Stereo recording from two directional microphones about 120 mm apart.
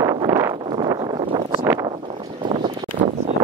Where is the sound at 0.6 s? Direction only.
45° right (ahead or behind).